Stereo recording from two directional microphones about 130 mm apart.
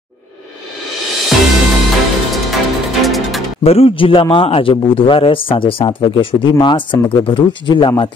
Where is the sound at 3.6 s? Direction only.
50° left (ahead or behind).